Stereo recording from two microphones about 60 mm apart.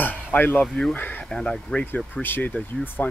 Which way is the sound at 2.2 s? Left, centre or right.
Left.